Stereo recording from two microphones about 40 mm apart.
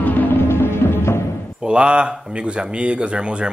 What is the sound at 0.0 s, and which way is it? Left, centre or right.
Music, left.